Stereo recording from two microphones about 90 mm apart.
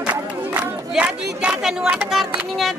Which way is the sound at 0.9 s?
10° right (ahead or behind).